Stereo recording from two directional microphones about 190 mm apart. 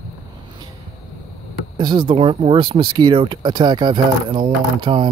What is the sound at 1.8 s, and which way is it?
Speech, 25° right (ahead or behind).